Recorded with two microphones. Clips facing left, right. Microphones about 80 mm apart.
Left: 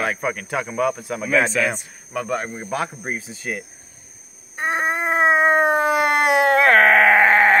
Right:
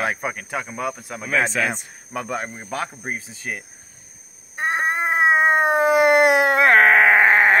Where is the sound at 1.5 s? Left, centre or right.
Right.